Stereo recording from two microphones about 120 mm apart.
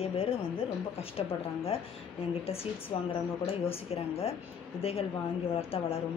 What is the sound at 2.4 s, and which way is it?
Speech, 55° left (ahead or behind).